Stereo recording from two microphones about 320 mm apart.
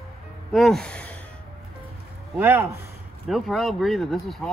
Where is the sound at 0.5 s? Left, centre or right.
Centre.